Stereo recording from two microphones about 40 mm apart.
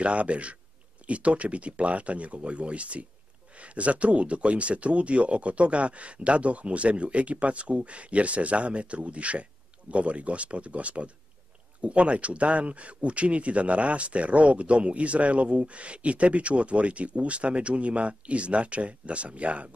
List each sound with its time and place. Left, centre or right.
0.0 s speech: right